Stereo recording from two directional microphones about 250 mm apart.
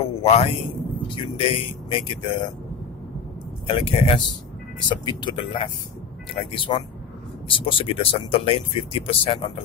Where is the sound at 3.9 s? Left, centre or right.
Left.